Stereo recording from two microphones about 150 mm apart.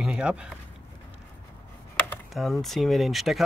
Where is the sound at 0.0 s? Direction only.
5° right (ahead or behind).